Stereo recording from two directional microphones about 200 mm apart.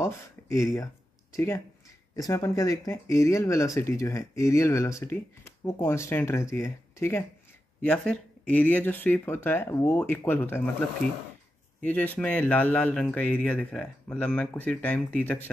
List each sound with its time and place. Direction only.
0.0 s speech: 15° left (ahead or behind)
11.8 s speech: 10° left (ahead or behind)